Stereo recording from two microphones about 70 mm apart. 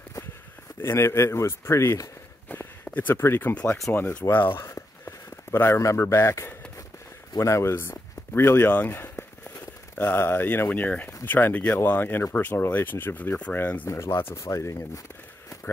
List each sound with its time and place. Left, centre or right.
0.7 s speech: left
2.4 s a sound: left
3.2 s speech: left
4.6 s a sound: left
7.3 s speech: left
8.6 s speech: left
13.8 s speech: left